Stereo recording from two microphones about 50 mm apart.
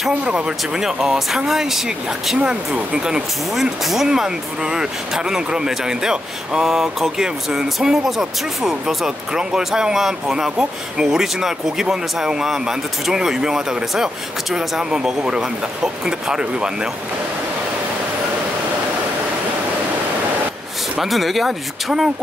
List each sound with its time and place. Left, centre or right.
0.1 s speech: right
3.8 s speech: centre
4.1 s speech: centre
21.0 s speech: centre